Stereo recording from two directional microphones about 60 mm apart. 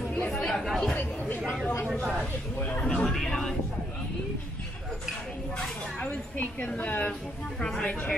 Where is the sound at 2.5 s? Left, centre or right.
Left.